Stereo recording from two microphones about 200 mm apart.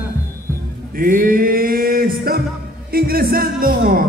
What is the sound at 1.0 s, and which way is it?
A man's voice, 45° right (ahead or behind).